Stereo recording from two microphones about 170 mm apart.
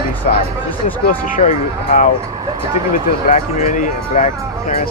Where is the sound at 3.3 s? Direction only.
50° left (ahead or behind).